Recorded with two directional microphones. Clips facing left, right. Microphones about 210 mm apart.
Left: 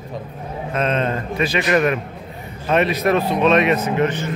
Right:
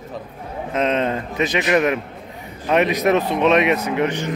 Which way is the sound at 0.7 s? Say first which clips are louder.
Right 1 dB; 15° right (ahead or behind).